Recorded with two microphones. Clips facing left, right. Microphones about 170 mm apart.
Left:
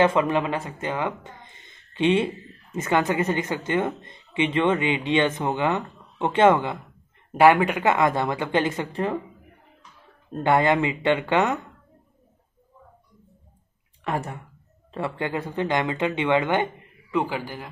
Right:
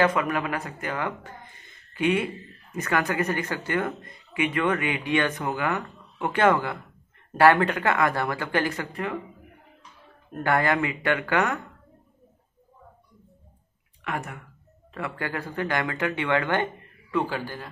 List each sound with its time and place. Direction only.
0.0 s speech: 25° left (ahead or behind)
10.3 s speech: 20° left (ahead or behind)
14.0 s a man's voice: 30° left (ahead or behind); by 17.6 s 15° left (ahead or behind)